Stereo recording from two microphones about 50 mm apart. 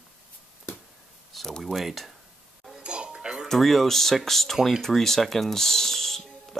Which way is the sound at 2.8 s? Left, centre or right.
Centre.